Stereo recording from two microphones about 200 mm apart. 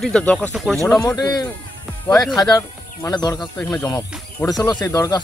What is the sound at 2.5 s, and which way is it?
Speech, 20° left (ahead or behind).